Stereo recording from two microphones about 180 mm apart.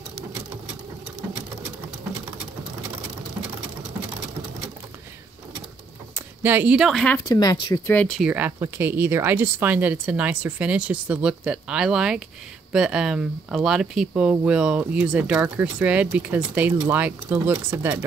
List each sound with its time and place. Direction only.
6.1 s speech: 10° right (ahead or behind)
7.2 s speech: 20° left (ahead or behind)
8.2 s speech: 10° right (ahead or behind)